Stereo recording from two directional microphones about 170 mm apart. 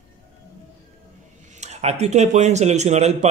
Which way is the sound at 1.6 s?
40° right (ahead or behind).